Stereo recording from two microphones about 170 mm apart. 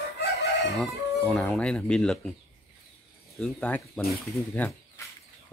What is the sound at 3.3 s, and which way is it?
Speech, 5° left (ahead or behind).